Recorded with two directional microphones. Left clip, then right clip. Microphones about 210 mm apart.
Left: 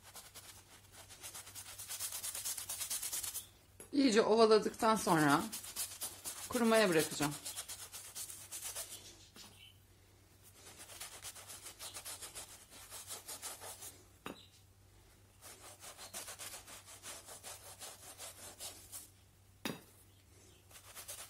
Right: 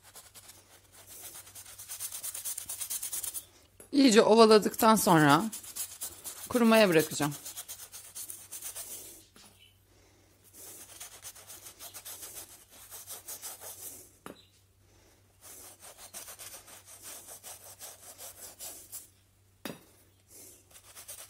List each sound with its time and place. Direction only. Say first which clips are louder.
0.0 s a sound: right 1 dB; centre (ahead or behind)
3.9 s speech: right 8 dB; 50° right (ahead or behind)
5.5 s a sound: right 2 dB; centre (ahead or behind)
6.5 s speech: right 7 dB; 50° right (ahead or behind)
7.3 s rub: right 2 dB; 5° right (ahead or behind)
10.6 s rub: right 2 dB; centre (ahead or behind)
15.4 s sawing: right 2 dB; centre (ahead or behind)
20.7 s bird: even; centre (ahead or behind)